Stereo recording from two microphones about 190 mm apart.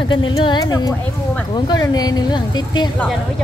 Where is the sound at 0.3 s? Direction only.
20° left (ahead or behind).